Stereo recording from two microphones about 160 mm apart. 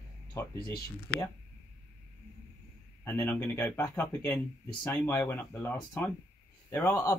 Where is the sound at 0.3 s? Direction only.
20° left (ahead or behind).